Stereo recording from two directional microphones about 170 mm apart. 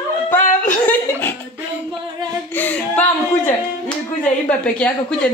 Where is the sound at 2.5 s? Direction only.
10° left (ahead or behind).